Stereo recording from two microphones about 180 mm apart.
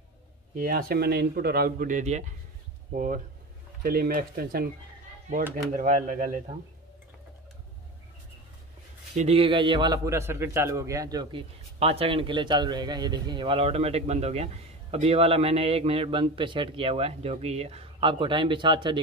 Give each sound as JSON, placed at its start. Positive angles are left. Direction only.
{"t": 0.6, "sound": "speech", "side_deg": -55}
{"t": 5.8, "sound": "speech", "side_deg": -45}
{"t": 9.1, "sound": "a man's voice", "side_deg": -35}
{"t": 11.8, "sound": "speech", "side_deg": -35}